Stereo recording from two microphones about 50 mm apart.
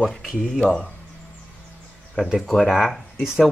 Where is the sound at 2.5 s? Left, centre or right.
Centre.